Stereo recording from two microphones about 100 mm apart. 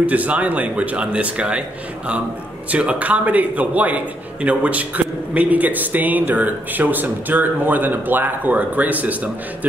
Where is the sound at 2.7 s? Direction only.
15° right (ahead or behind).